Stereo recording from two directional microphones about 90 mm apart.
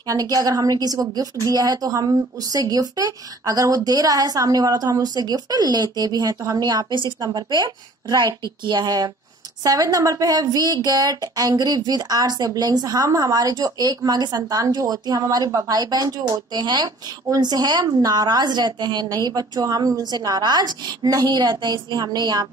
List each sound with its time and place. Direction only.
0.0 s a woman's voice: 40° right (ahead or behind)